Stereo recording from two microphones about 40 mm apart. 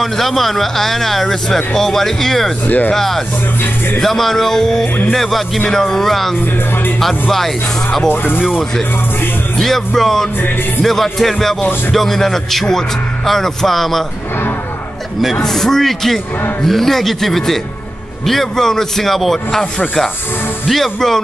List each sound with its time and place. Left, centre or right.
0.0 s speech: centre
2.6 s speech: left
2.9 s speech: centre
9.6 s speech: centre
15.4 s speech: centre
20.7 s speech: centre